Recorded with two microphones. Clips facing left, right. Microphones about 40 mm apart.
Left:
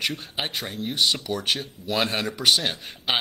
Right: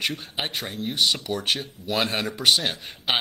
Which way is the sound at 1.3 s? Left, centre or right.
Centre.